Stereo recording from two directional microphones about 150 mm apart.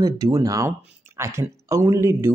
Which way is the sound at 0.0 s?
25° right (ahead or behind).